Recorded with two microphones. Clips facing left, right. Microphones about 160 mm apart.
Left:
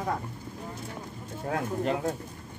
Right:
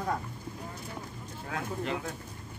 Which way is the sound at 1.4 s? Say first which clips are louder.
Left 6 dB; 45° left (ahead or behind).